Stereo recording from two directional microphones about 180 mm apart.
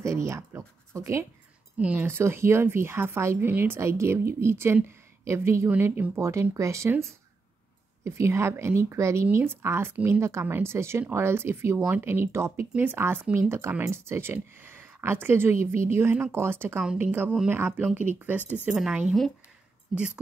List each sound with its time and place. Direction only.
0.0 s a woman's voice: 15° right (ahead or behind)
18.4 s speech: 10° left (ahead or behind)
18.7 s a woman's voice: 5° right (ahead or behind)